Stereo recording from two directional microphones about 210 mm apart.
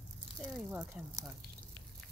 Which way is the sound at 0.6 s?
5° right (ahead or behind).